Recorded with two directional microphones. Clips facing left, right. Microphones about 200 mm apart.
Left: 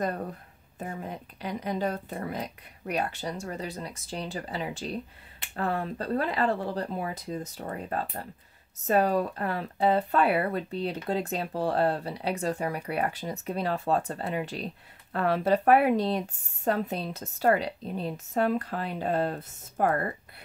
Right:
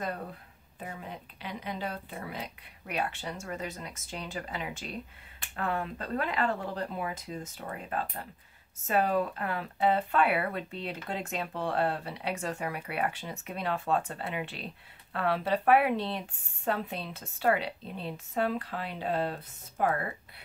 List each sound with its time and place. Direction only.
0.7 s speech: 45° left (ahead or behind)